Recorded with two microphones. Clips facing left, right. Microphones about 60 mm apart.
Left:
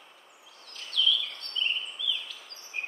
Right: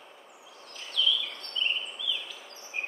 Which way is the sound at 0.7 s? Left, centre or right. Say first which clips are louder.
Left 1 dB; centre.